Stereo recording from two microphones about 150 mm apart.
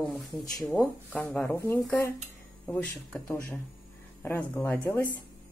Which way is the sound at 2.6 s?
10° left (ahead or behind).